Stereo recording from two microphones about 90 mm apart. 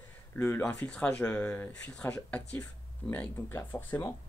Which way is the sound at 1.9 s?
15° left (ahead or behind).